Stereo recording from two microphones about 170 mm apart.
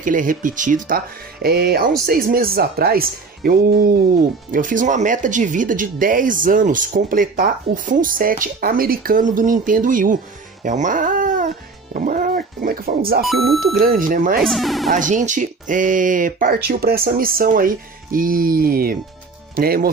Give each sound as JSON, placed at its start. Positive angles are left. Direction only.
{"t": 0.0, "sound": "speech", "side_deg": -50}
{"t": 10.6, "sound": "music", "side_deg": -50}
{"t": 13.2, "sound": "speech", "side_deg": 0}
{"t": 13.7, "sound": "speech", "side_deg": -55}
{"t": 14.4, "sound": "speech", "side_deg": 0}
{"t": 14.9, "sound": "speech", "side_deg": -50}
{"t": 16.6, "sound": "speech", "side_deg": -65}